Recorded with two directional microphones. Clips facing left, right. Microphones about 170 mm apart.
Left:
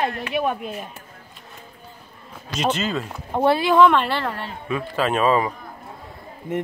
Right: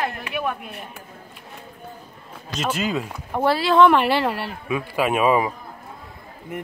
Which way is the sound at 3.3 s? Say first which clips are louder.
Left 2 dB; 20° left (ahead or behind).